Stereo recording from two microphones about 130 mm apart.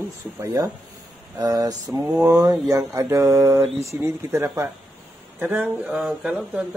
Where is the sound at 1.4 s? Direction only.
30° right (ahead or behind).